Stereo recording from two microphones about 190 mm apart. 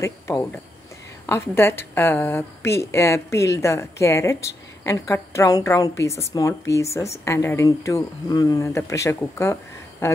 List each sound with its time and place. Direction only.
0.0 s a woman's voice: 15° left (ahead or behind)